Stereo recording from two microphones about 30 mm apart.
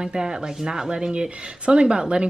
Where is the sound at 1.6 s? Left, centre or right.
Right.